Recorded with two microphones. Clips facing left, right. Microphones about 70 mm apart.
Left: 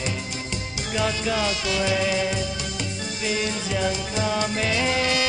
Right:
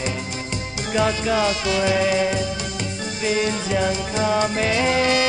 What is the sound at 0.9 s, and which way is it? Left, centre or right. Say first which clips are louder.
Music: right 5 dB; right.